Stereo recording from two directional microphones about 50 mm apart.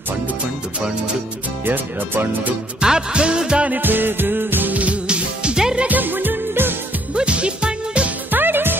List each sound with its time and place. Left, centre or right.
1.7 s speech: right
2.8 s music: centre
3.7 s music: right
5.0 s music: centre
5.9 s music: right
7.2 s music: right
8.3 s music: right